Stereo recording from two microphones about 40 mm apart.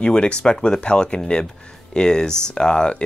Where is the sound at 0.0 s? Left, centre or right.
Left.